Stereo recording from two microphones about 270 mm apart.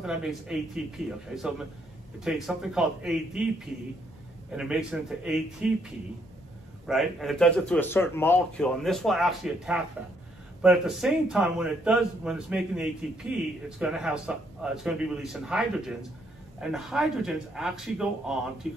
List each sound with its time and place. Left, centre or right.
0.0 s a man's voice: centre
6.9 s a man's voice: centre